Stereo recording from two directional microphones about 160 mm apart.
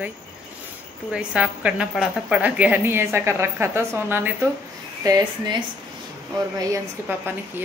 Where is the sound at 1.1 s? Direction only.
5° right (ahead or behind); by 5.6 s 25° right (ahead or behind).